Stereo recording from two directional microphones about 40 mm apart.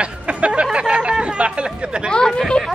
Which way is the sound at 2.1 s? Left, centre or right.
Left.